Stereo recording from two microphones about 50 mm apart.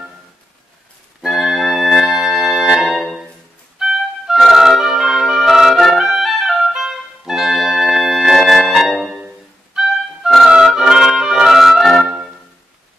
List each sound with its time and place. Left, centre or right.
1.2 s music: centre